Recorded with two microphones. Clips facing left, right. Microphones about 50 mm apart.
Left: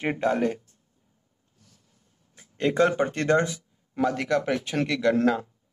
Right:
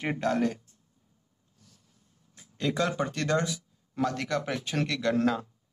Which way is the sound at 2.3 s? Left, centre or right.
Left.